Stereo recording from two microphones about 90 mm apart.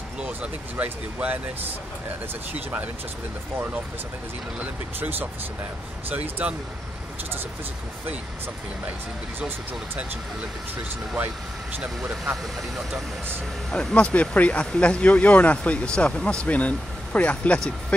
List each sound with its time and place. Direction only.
0.2 s speech: 15° right (ahead or behind)
4.6 s speech: 20° right (ahead or behind)
13.7 s speech: 10° left (ahead or behind)